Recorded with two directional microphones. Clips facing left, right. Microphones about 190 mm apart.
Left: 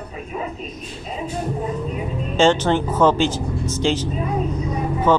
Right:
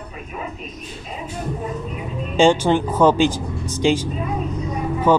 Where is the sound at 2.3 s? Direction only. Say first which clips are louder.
Right 2 dB; 10° right (ahead or behind).